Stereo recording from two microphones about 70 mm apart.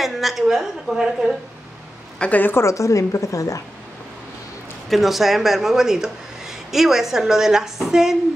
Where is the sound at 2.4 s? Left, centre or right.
Left.